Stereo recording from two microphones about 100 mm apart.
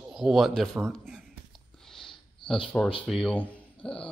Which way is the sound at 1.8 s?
5° left (ahead or behind).